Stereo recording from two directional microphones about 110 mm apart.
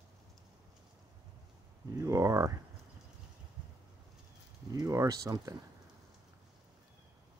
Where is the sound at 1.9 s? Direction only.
30° right (ahead or behind).